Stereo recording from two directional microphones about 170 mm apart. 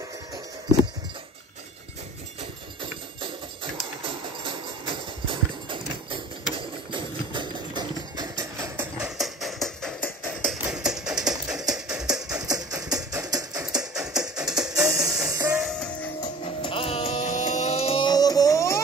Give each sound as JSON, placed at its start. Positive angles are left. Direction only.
{"t": 4.0, "sound": "music", "side_deg": -30}
{"t": 9.0, "sound": "music", "side_deg": 0}
{"t": 12.3, "sound": "music", "side_deg": -20}
{"t": 13.9, "sound": "music", "side_deg": -5}
{"t": 15.2, "sound": "music", "side_deg": -20}
{"t": 15.5, "sound": "music", "side_deg": 0}
{"t": 16.2, "sound": "music", "side_deg": 35}